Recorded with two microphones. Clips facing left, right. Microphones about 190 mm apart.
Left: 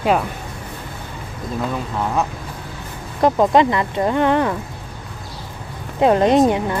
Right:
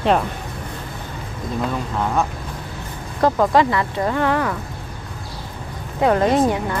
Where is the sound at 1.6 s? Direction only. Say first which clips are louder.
Even; centre (ahead or behind).